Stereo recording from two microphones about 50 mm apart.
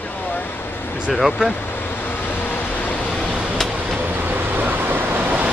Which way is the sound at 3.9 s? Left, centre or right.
Right.